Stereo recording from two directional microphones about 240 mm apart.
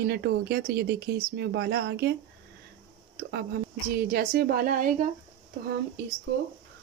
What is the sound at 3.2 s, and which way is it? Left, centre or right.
A woman's voice, right.